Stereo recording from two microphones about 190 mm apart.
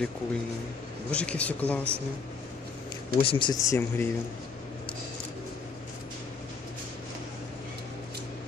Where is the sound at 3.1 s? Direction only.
25° left (ahead or behind).